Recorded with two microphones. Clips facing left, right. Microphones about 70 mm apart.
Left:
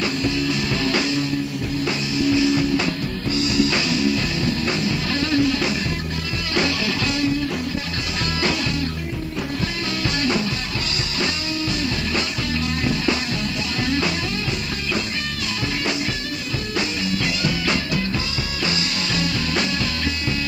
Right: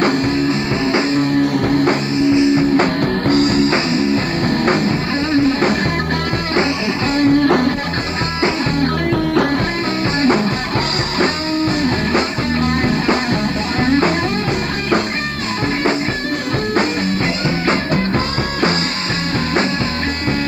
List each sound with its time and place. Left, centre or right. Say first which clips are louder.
0.5 s music: right 5 dB; right
2.2 s music: right 5 dB; right
2.8 s music: right 9 dB; right
4.5 s music: right 9 dB; right
5.3 s music: right 6 dB; right
7.2 s music: right 10 dB; right
10.2 s music: right 10 dB; right
17.5 s music: right 7 dB; right